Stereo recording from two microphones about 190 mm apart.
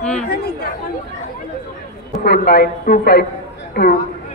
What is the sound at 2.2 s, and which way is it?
A woman's voice, 55° left (ahead or behind).